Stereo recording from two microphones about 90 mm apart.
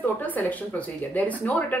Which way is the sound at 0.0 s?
20° left (ahead or behind).